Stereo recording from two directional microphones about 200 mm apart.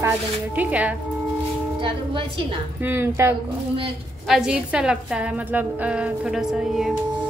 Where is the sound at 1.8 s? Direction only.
25° right (ahead or behind).